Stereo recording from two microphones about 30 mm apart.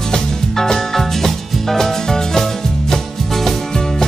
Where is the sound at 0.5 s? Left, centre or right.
Centre.